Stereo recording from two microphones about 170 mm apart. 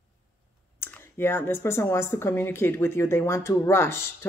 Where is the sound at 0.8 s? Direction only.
10° left (ahead or behind).